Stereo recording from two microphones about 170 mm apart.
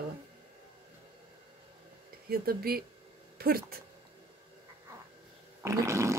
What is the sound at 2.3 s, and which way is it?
Speech, 60° right (ahead or behind).